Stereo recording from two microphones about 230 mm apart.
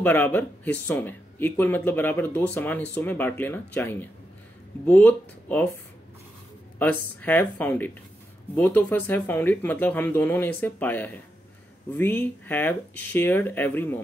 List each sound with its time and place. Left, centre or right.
0.0 s speech: centre
6.8 s speech: centre